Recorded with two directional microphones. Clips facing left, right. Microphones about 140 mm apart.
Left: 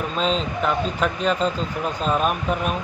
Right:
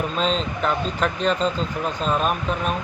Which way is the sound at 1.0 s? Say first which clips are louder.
Right 1 dB; 5° left (ahead or behind).